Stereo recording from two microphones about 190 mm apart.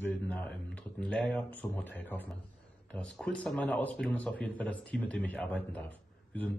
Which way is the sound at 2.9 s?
5° left (ahead or behind).